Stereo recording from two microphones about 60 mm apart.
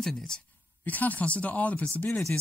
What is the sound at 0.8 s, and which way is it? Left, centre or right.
Speech, left.